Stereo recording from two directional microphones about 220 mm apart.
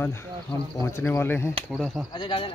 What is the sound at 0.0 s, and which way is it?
Speech, 10° left (ahead or behind).